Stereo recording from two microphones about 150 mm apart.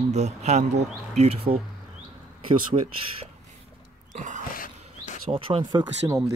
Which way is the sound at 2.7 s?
40° right (ahead or behind).